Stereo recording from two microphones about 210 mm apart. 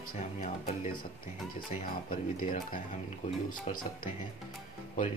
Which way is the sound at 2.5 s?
40° left (ahead or behind).